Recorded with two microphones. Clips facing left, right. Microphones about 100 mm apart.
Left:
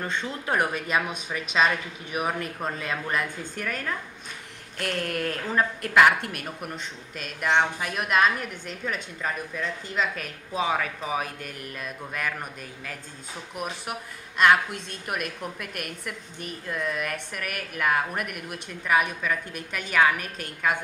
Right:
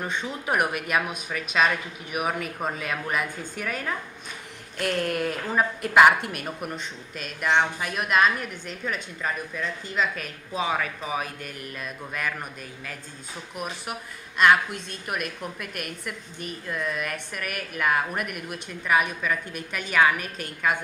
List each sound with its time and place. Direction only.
0.0 s a woman's voice: 15° right (ahead or behind)
7.4 s a man's voice: 55° left (ahead or behind)
13.6 s speech: 25° left (ahead or behind)
14.3 s a man's voice: 55° left (ahead or behind)
16.6 s a man's voice: 55° left (ahead or behind)
19.5 s a woman's voice: 15° right (ahead or behind)